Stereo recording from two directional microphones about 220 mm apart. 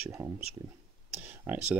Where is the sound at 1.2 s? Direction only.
5° right (ahead or behind).